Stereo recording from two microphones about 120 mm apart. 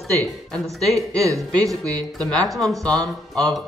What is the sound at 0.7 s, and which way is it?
Speech, centre (ahead or behind).